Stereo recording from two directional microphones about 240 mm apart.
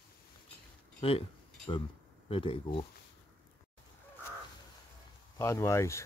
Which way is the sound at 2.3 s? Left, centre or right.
Left.